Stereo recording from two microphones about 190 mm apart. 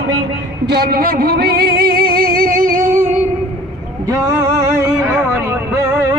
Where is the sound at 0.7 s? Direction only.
55° right (ahead or behind).